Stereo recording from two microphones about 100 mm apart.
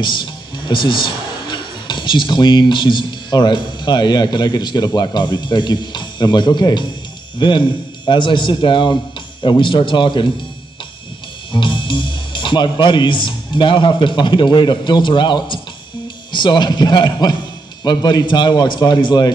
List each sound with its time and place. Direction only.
0.0 s speech: 50° left (ahead or behind)
11.5 s speech: 55° left (ahead or behind)